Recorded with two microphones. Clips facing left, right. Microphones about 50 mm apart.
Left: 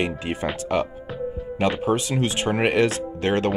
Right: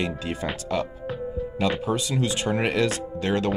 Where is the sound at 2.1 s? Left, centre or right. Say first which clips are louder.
Left 2 dB; left.